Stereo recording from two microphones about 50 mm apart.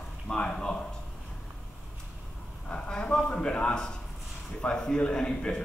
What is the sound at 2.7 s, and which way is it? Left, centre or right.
A man's voice, centre.